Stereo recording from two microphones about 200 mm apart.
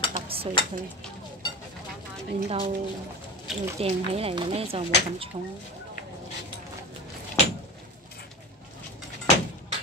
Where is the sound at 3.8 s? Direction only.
30° right (ahead or behind).